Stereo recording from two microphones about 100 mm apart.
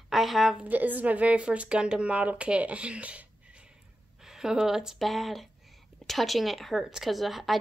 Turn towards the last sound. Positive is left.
turn(degrees=0)  # may be behind; listen again after turning